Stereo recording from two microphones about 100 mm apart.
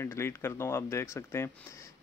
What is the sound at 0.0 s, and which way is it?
Speech, 25° left (ahead or behind).